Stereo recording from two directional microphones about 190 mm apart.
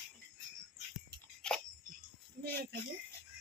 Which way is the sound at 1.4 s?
5° left (ahead or behind).